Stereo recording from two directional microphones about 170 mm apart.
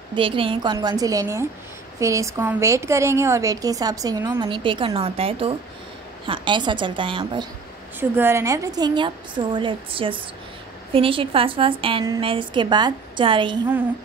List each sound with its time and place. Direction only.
0.1 s a woman's voice: 30° right (ahead or behind)
4.4 s a woman's voice: 30° right (ahead or behind)
8.0 s a woman's voice: 15° right (ahead or behind); by 13.6 s 30° right (ahead or behind)